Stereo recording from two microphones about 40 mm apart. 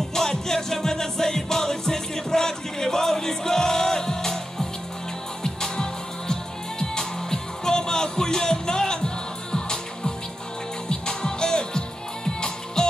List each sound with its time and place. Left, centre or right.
0.1 s music: centre